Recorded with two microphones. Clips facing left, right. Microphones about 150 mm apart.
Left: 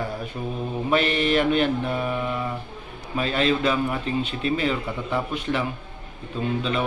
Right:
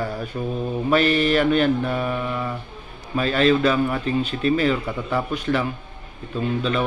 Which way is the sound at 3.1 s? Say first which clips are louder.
Right 4 dB; 25° left (ahead or behind).